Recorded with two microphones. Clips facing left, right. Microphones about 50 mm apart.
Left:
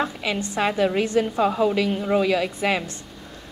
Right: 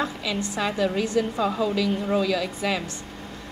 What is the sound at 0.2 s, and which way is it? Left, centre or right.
A woman's voice, left.